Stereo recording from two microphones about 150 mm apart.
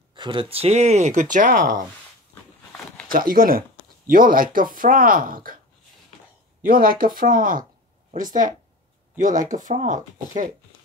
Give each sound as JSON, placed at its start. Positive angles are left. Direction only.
{"t": 0.1, "sound": "speech", "side_deg": -30}
{"t": 1.3, "sound": "speech", "side_deg": -65}
{"t": 3.1, "sound": "speech", "side_deg": -75}
{"t": 6.6, "sound": "speech", "side_deg": -70}